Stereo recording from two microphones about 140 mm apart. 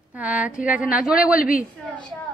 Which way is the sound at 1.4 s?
80° left.